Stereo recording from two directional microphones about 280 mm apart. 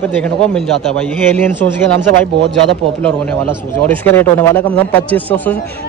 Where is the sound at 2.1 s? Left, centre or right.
Right.